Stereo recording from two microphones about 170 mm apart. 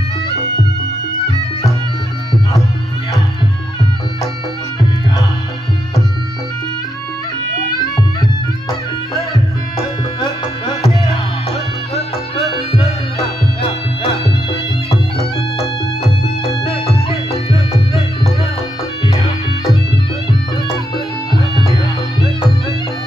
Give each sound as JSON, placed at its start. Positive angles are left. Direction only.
{"t": 11.9, "sound": "music", "side_deg": 35}